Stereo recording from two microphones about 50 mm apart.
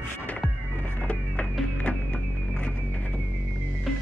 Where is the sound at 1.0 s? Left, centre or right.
Left.